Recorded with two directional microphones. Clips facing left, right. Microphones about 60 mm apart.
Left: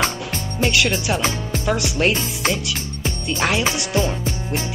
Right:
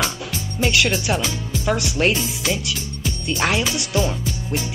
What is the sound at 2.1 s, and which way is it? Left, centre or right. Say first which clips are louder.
Speech: left 2 dB; left.